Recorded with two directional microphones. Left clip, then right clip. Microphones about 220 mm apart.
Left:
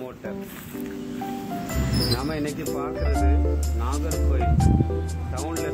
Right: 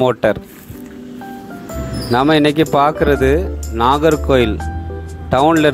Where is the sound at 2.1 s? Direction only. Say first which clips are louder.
Right 16 dB; 50° right (ahead or behind).